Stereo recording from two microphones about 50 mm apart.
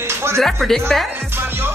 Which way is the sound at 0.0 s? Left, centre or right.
Right.